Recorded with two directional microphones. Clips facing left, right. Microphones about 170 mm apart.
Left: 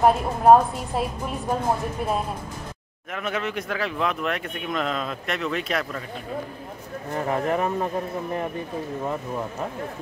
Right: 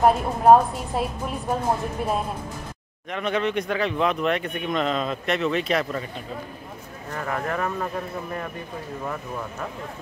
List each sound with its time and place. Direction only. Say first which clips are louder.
0.0 s speech: even; centre (ahead or behind)
3.1 s speech: right 4 dB; 5° left (ahead or behind)
7.1 s speech: left 4 dB; 25° left (ahead or behind)